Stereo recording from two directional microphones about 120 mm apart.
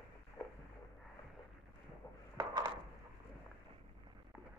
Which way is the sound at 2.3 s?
40° right (ahead or behind).